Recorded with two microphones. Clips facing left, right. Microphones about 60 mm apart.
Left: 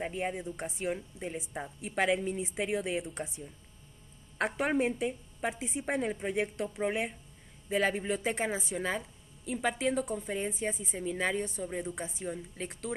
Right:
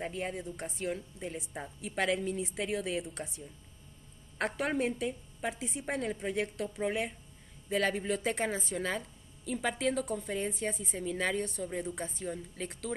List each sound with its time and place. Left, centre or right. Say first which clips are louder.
0.0 s a woman's voice: left 2 dB; centre
0.7 s a woman's voice: left 2 dB; centre
1.2 s a woman's voice: left 2 dB; centre
4.4 s a woman's voice: left 2 dB; centre